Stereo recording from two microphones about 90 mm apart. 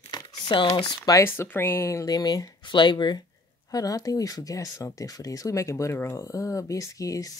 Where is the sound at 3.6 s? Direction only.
45° left (ahead or behind).